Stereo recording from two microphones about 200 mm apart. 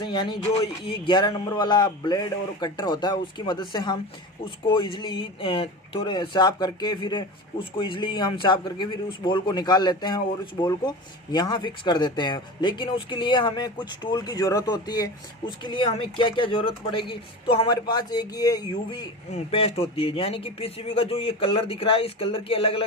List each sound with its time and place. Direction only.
0.0 s speech: 25° left (ahead or behind)